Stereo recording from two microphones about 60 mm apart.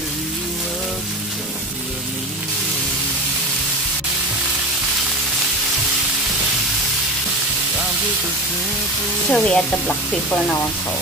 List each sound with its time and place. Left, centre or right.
9.3 s speech: centre